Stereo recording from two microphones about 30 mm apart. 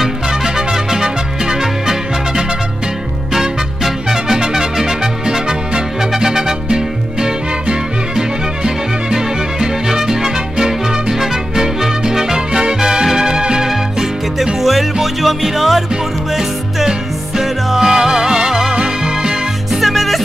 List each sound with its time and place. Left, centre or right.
0.3 s music: centre
13.7 s music: centre
17.4 s music: centre
19.7 s music: centre